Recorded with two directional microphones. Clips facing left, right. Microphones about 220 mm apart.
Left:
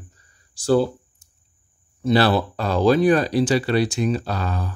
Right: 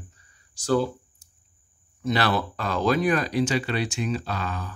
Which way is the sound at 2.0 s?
30° left (ahead or behind).